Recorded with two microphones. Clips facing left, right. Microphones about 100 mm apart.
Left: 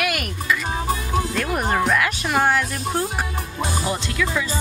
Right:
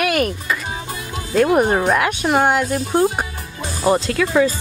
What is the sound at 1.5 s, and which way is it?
Speech, 45° right (ahead or behind).